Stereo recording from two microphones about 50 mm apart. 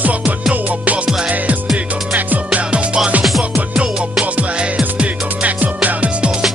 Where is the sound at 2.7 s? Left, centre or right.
Right.